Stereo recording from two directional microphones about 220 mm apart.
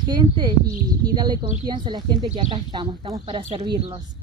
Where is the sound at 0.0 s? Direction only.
20° right (ahead or behind).